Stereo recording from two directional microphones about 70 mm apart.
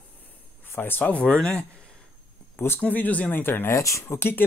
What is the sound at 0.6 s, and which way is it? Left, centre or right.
Speech, left.